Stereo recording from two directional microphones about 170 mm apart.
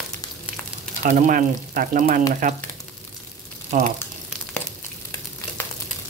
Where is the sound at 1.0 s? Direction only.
50° right (ahead or behind).